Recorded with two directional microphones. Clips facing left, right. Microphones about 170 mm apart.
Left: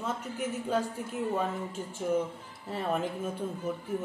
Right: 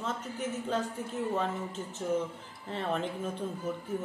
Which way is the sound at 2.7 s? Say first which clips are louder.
Left 2 dB; 10° left (ahead or behind).